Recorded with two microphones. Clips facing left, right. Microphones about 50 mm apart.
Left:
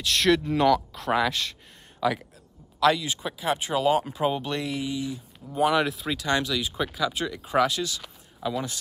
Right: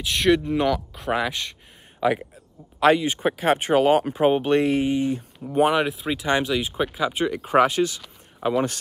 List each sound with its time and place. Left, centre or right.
0.0 s speech: centre
2.0 s speech: right
5.8 s speech: centre; by 8.6 s right